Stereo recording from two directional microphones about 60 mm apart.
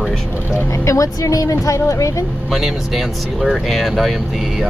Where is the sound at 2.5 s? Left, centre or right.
Centre.